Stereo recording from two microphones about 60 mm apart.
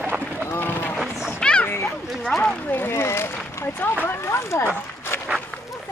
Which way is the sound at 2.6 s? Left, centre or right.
Left.